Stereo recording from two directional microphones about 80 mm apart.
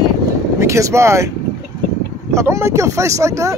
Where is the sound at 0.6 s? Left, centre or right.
Right.